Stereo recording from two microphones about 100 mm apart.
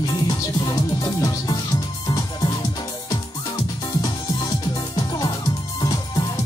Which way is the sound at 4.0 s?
40° left (ahead or behind).